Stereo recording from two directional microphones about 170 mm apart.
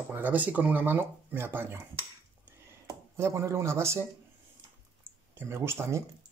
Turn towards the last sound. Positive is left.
turn(degrees=-15)  # may be behind; listen again after turning